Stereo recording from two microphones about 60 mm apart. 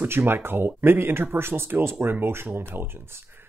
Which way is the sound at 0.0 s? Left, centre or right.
Right.